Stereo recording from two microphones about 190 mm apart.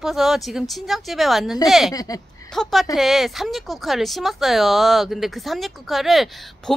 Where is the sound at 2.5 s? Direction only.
Centre (ahead or behind).